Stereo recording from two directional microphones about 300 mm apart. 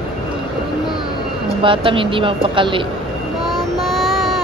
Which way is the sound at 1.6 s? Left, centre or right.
Centre.